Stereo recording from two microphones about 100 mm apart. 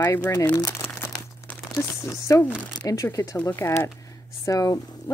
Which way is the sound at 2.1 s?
30° left (ahead or behind).